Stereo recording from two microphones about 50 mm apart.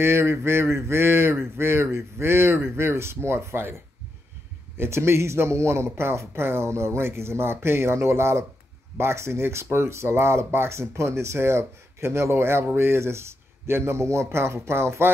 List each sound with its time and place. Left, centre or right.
0.0 s speech: right
4.7 s speech: right